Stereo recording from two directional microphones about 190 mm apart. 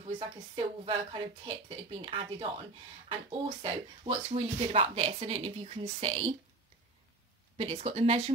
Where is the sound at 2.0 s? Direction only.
25° right (ahead or behind).